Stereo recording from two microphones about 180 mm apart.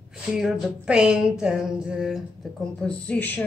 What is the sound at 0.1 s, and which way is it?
A woman's voice, 5° right (ahead or behind).